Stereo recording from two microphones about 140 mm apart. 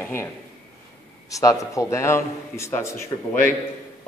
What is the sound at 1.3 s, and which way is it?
A man's voice, 25° left (ahead or behind).